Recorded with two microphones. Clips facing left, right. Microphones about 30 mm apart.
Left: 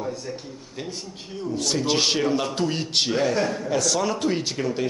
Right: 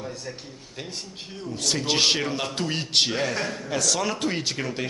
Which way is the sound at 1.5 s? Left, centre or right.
Centre.